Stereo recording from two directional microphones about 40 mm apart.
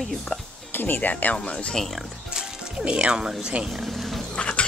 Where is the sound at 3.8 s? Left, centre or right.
Centre.